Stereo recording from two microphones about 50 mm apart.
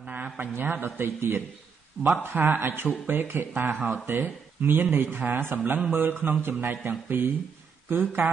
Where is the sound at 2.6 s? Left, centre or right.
Right.